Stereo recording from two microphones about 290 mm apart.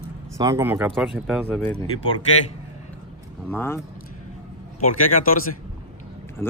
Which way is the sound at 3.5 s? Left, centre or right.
Centre.